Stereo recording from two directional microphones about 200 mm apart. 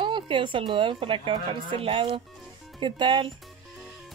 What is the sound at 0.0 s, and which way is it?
Speech, 25° right (ahead or behind).